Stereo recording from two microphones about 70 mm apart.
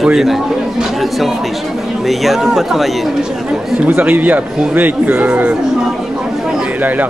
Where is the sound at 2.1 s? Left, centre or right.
Centre.